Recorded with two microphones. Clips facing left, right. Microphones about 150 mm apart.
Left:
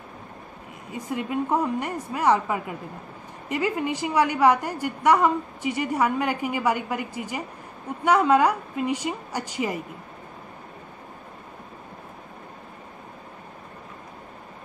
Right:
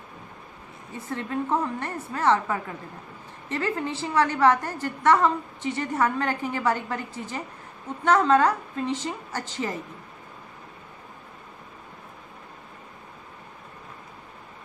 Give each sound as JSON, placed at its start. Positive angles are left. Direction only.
{"t": 0.9, "sound": "a woman's voice", "side_deg": 15}